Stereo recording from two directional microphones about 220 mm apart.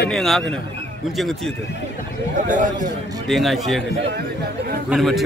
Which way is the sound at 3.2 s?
Centre (ahead or behind).